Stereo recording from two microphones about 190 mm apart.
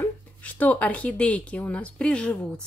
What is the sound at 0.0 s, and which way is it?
A woman's voice, 10° left (ahead or behind).